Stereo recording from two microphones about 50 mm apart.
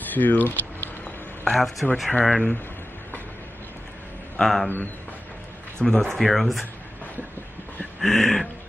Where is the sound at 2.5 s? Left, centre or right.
Left.